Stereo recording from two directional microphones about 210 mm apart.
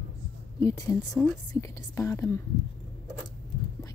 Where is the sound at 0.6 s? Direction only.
15° left (ahead or behind).